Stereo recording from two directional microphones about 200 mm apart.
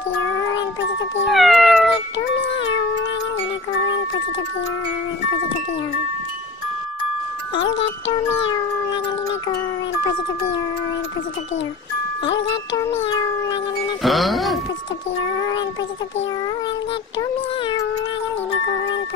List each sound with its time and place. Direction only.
1.3 s cat: centre (ahead or behind)
8.5 s cat: 25° left (ahead or behind)
12.7 s cat: 15° left (ahead or behind)
14.0 s speech: centre (ahead or behind)
15.3 s cat: 20° left (ahead or behind)
17.2 s cat: 20° left (ahead or behind)
18.5 s music: 20° left (ahead or behind)